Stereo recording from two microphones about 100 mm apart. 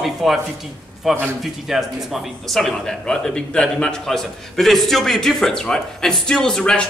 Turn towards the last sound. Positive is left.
turn(degrees=5)  # may be behind; listen again after turning